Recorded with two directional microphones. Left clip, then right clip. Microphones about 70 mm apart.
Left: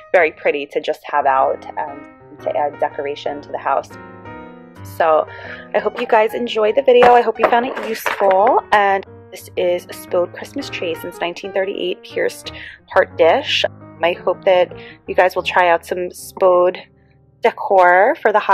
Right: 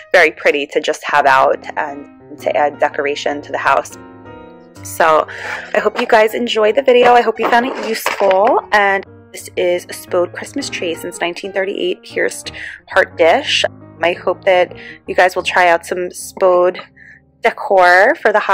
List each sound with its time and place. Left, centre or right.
0.1 s speech: centre
0.9 s speech: right
4.9 s speech: right
5.8 s a woman's voice: right
6.0 s speech: centre